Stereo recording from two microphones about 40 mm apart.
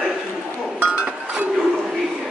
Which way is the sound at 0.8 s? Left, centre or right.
Right.